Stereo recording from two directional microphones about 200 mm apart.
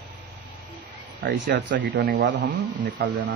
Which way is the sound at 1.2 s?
60° right (ahead or behind).